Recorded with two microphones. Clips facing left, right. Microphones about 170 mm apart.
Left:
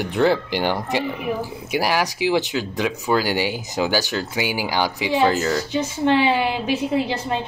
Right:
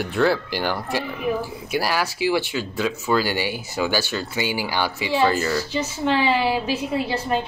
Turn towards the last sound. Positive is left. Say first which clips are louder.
# even
turn(degrees=15)  # may be behind; listen again after turning